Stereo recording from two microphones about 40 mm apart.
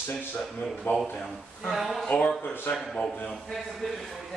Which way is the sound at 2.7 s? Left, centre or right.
Left.